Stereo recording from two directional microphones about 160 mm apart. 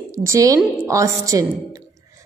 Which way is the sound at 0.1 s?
20° right (ahead or behind).